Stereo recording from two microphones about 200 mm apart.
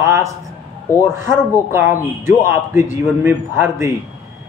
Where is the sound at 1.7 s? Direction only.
10° right (ahead or behind).